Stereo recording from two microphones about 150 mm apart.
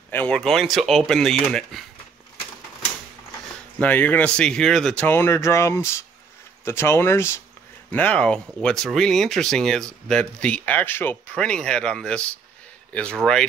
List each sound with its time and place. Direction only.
0.1 s speech: 10° left (ahead or behind)
3.8 s speech: 10° left (ahead or behind)